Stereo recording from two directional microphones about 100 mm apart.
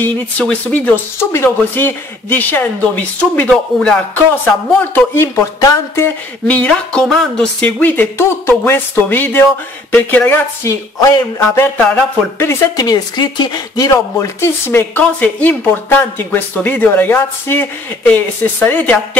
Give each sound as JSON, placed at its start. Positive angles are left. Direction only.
{"t": 0.0, "sound": "speech", "side_deg": 15}
{"t": 4.7, "sound": "speech", "side_deg": 20}
{"t": 6.4, "sound": "speech", "side_deg": 10}
{"t": 10.6, "sound": "speech", "side_deg": 30}
{"t": 11.3, "sound": "speech", "side_deg": 25}
{"t": 11.8, "sound": "speech", "side_deg": 15}
{"t": 12.7, "sound": "speech", "side_deg": 40}